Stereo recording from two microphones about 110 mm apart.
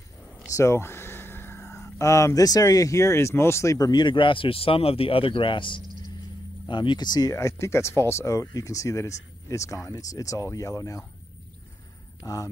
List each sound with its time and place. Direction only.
0.5 s speech: 25° left (ahead or behind)
3.9 s speech: 45° left (ahead or behind)
7.3 s speech: 25° left (ahead or behind)
12.2 s speech: 30° left (ahead or behind)